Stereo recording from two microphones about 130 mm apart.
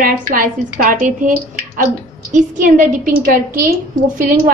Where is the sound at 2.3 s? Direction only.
80° right.